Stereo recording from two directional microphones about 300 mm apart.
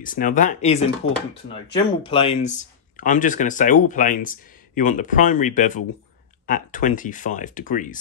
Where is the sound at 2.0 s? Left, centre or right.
Centre.